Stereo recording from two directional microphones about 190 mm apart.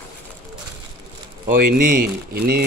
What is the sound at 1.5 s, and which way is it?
Speech, 45° right (ahead or behind).